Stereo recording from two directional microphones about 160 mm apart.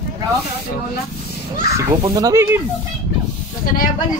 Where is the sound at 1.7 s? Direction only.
20° right (ahead or behind).